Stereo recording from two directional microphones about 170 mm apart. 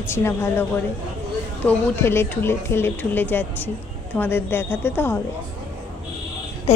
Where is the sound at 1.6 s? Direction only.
15° left (ahead or behind).